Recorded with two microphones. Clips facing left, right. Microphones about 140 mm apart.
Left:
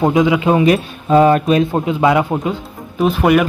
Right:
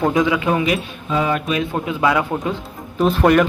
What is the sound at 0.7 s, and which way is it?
Speech, 45° left (ahead or behind).